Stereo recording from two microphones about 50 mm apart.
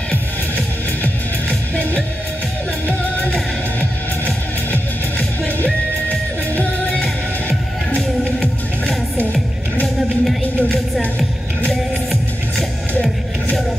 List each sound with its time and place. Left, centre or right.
6.5 s music: left
10.6 s music: left